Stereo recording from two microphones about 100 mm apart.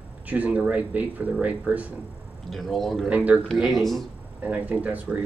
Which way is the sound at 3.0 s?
15° right (ahead or behind).